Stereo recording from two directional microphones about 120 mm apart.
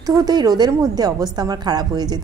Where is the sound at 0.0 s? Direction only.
30° right (ahead or behind).